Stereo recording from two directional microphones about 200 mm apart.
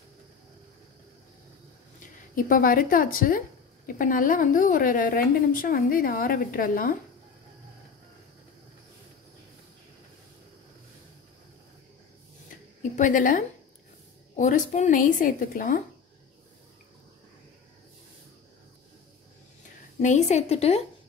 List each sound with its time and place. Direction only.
2.0 s speech: 40° left (ahead or behind)
12.9 s a woman's voice: 40° left (ahead or behind)
20.0 s a woman's voice: 35° left (ahead or behind)